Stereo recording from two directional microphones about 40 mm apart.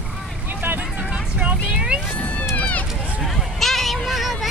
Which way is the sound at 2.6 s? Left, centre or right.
Left.